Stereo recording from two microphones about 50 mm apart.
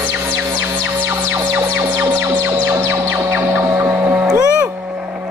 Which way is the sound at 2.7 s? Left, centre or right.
Right.